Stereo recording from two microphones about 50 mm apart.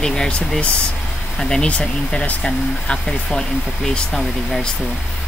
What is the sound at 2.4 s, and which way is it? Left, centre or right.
Speech, centre.